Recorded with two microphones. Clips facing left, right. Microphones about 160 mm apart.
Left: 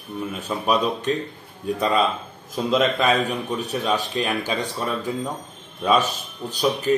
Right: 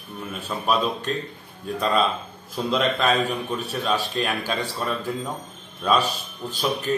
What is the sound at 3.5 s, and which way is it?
Speech, 20° left (ahead or behind).